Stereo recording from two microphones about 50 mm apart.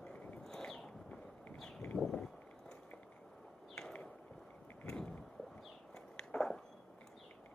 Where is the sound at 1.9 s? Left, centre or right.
Left.